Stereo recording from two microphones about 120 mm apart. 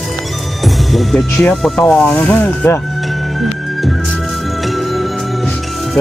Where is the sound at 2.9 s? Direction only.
Centre (ahead or behind).